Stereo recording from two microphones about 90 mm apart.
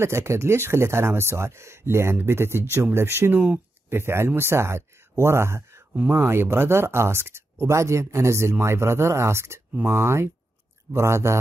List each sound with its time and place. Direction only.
0.0 s speech: 30° right (ahead or behind)
3.3 s speech: 15° right (ahead or behind)
3.9 s speech: 30° right (ahead or behind)